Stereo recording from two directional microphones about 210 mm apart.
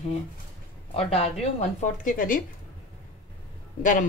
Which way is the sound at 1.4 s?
30° left (ahead or behind).